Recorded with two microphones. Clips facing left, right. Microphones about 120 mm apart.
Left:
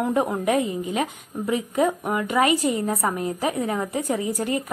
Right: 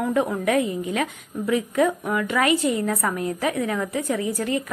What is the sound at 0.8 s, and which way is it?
A woman's voice, 25° left (ahead or behind).